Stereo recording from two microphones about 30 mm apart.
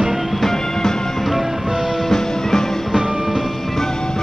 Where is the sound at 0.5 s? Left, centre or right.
Centre.